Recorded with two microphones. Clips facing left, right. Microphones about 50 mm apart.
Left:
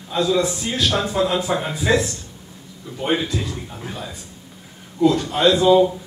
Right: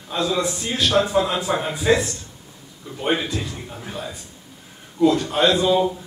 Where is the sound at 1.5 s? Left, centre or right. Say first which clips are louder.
Even; centre.